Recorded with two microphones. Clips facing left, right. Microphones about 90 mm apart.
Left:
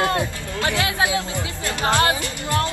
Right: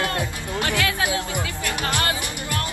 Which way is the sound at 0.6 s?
20° left (ahead or behind).